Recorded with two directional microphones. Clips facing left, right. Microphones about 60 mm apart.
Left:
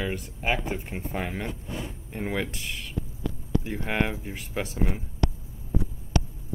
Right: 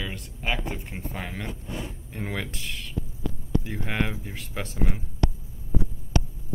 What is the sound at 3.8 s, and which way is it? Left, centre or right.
Speech, centre.